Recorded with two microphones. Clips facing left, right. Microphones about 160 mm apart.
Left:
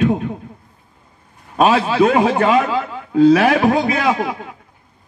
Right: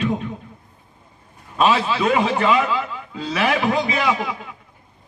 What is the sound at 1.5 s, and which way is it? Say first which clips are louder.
A man's voice: left 4 dB; 50° left (ahead or behind).